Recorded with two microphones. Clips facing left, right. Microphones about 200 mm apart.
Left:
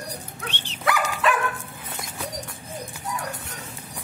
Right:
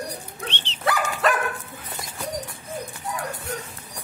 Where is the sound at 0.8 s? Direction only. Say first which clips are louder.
Right 1 dB; 35° right (ahead or behind).